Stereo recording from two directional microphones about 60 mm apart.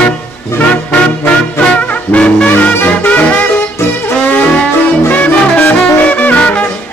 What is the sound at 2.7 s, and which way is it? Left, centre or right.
Music, left.